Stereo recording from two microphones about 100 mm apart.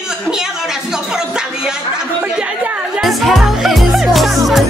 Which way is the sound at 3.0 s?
Centre (ahead or behind).